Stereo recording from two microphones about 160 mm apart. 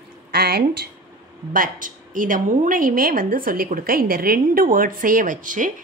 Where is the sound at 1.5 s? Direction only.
60° right (ahead or behind).